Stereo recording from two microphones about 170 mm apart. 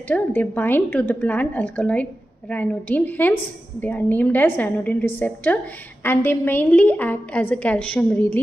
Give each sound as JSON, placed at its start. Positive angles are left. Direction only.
{"t": 0.1, "sound": "a woman's voice", "side_deg": 10}